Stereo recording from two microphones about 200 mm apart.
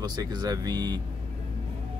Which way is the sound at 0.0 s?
20° right (ahead or behind).